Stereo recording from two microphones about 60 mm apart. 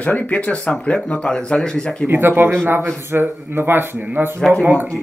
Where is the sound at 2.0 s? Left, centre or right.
Right.